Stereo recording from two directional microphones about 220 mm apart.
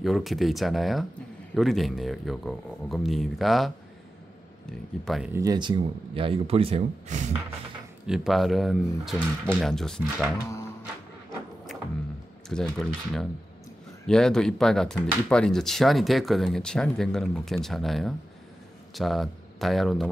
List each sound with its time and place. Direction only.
0.0 s speech: centre (ahead or behind)
5.3 s speech: 15° right (ahead or behind); by 7.2 s 35° right (ahead or behind)
8.1 s speech: centre (ahead or behind)
12.4 s speech: centre (ahead or behind)